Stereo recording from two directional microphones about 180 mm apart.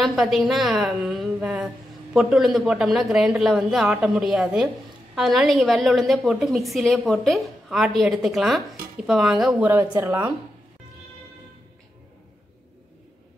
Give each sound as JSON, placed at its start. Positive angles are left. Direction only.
{"t": 0.0, "sound": "a woman's voice", "side_deg": 0}